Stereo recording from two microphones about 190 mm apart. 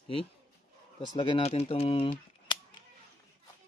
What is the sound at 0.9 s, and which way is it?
Speech, 25° left (ahead or behind).